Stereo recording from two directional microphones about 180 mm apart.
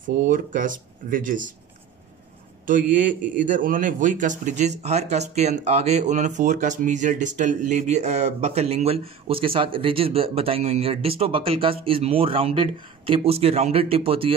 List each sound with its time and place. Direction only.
0.0 s speech: 50° right (ahead or behind)
2.6 s a man's voice: 45° right (ahead or behind); by 14.3 s 30° right (ahead or behind)